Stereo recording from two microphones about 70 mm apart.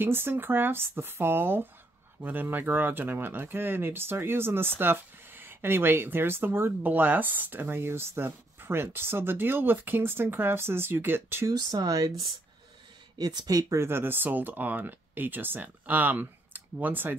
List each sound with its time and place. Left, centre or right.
0.0 s speech: right
11.4 s speech: right
13.2 s speech: right
13.6 s speech: right
13.8 s speech: right